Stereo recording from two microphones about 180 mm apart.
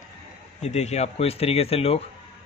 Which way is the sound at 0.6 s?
40° left (ahead or behind).